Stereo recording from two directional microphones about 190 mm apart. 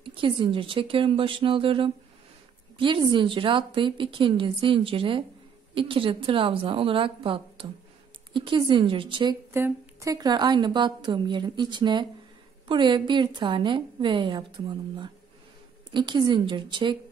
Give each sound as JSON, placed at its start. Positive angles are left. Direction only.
{"t": 0.0, "sound": "a woman's voice", "side_deg": -25}
{"t": 9.5, "sound": "a woman's voice", "side_deg": -15}